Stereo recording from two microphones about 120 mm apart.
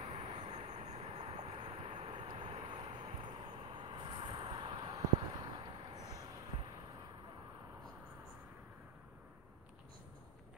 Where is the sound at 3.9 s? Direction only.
45° right (ahead or behind).